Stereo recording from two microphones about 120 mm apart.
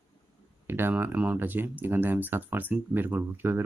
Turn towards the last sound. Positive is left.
turn(degrees=-20)  # may be behind; listen again after turning